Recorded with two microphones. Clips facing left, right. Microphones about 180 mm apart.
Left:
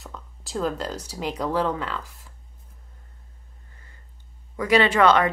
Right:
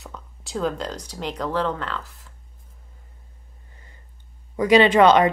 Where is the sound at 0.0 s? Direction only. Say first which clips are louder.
Right 1 dB; centre (ahead or behind).